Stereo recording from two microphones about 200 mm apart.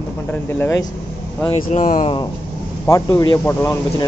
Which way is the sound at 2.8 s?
15° left (ahead or behind).